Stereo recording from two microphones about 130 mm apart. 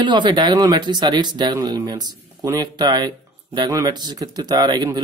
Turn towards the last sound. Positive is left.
turn(degrees=-35)  # may be behind; listen again after turning